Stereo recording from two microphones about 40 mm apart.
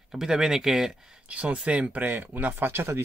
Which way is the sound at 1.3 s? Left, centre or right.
Right.